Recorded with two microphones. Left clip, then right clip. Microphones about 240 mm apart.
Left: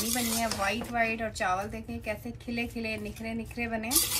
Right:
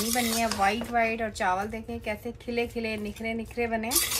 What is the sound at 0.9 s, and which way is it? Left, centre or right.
A woman's voice, right.